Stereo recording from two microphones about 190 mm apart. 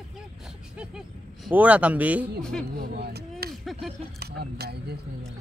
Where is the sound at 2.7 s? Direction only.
60° right (ahead or behind).